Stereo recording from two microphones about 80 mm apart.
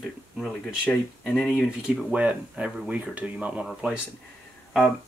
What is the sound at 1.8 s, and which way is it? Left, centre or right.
Speech, centre.